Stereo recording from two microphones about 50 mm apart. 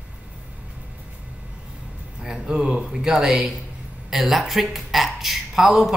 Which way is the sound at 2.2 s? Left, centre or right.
Centre.